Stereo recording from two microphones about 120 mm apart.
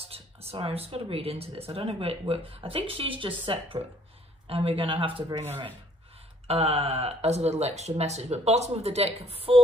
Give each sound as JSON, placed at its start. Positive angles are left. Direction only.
{"t": 0.0, "sound": "speech", "side_deg": -55}